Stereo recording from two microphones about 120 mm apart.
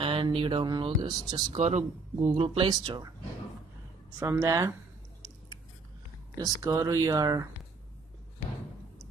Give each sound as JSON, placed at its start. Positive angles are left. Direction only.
{"t": 0.0, "sound": "speech", "side_deg": -45}
{"t": 1.6, "sound": "speech", "side_deg": -80}
{"t": 2.2, "sound": "speech", "side_deg": -55}
{"t": 4.2, "sound": "speech", "side_deg": -25}
{"t": 6.3, "sound": "speech", "side_deg": -30}